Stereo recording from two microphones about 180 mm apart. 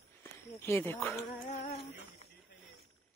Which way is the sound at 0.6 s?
15° left (ahead or behind).